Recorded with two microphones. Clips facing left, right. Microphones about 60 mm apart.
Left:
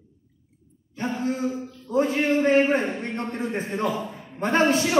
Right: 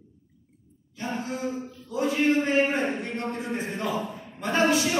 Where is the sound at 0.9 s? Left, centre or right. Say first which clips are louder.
Left 5 dB; left.